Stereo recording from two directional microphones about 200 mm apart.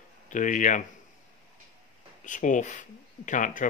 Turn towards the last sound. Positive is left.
turn(degrees=40)  # may be behind; listen again after turning